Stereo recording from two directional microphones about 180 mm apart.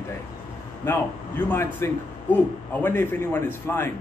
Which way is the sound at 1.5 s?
15° left (ahead or behind).